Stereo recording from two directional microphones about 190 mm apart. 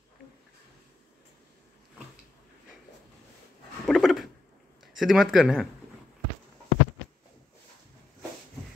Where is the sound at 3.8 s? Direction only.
Centre (ahead or behind).